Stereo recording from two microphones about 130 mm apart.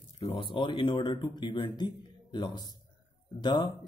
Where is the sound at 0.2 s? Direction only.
45° left (ahead or behind).